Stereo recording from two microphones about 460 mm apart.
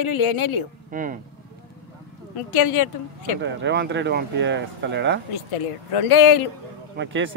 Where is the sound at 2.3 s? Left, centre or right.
Left.